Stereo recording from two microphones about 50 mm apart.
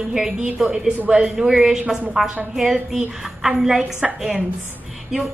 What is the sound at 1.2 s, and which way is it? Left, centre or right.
A woman's voice, centre.